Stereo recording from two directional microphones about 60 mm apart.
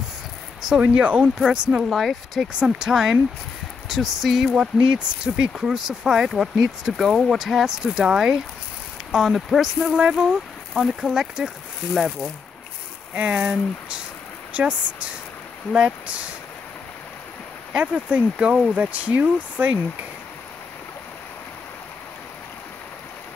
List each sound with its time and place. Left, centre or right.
0.7 s speech: right
1.4 s speech: centre
1.9 s a sound: centre
2.6 s speech: centre
3.9 s a sound: centre
4.6 s speech: centre
9.1 s a sound: centre
9.9 s speech: centre
11.9 s a sound: centre
13.1 s speech: right
14.5 s speech: centre
17.7 s speech: centre